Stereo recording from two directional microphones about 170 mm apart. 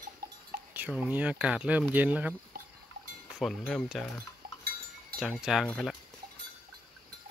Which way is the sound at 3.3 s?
Centre (ahead or behind).